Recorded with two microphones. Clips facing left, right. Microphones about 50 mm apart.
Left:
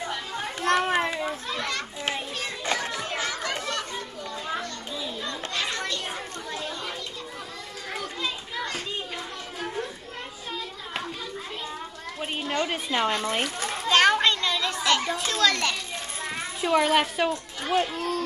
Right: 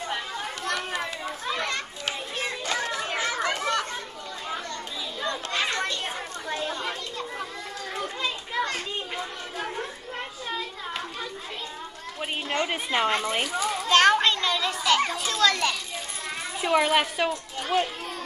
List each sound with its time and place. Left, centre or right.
0.7 s children playing: left
1.5 s children playing: centre
2.6 s children playing: left
3.0 s chatter: right
5.2 s children playing: right
6.5 s chatter: right
12.6 s a sound: centre
13.3 s a child's voice: centre
13.8 s children playing: centre
15.1 s a woman's voice: centre